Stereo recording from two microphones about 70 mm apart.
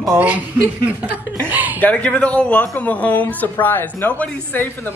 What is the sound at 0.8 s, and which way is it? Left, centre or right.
Speech, right.